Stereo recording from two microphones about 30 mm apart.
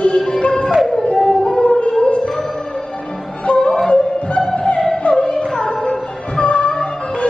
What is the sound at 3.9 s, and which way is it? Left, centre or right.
Music, left.